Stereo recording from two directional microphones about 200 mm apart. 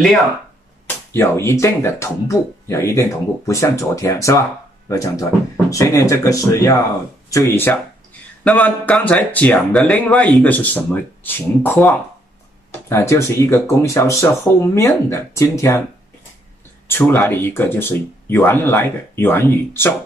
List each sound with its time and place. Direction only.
0.8 s speech: 10° left (ahead or behind)
12.9 s speech: 15° left (ahead or behind)
16.8 s speech: 10° left (ahead or behind)